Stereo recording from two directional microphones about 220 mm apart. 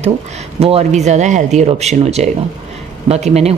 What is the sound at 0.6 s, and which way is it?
Speech, 25° right (ahead or behind).